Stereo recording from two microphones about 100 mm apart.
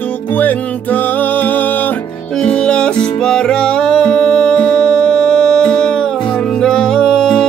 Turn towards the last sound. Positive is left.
turn(degrees=5)  # may be behind; listen again after turning